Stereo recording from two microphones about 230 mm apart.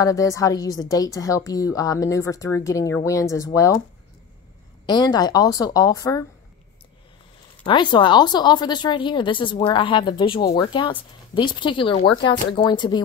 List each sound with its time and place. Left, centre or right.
0.0 s a woman's voice: centre
4.8 s a woman's voice: centre
7.6 s speech: centre